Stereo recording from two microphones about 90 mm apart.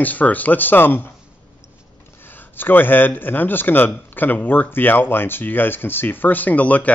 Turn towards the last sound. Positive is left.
turn(degrees=15)  # may be behind; listen again after turning